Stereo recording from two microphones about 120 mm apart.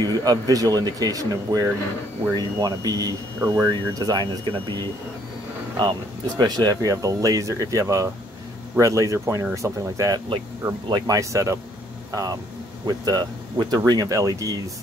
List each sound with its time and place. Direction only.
0.0 s speech: 35° right (ahead or behind)